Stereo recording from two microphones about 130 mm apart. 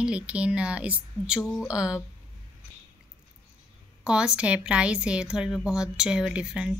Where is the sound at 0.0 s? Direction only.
10° right (ahead or behind).